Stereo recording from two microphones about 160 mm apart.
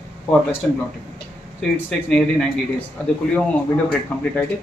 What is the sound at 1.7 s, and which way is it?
Speech, 10° left (ahead or behind).